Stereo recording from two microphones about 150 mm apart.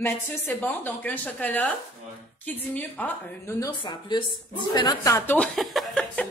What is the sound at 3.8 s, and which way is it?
A woman's voice, 30° left (ahead or behind).